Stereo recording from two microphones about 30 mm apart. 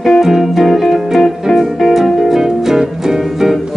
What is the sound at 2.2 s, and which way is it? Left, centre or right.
Music, centre.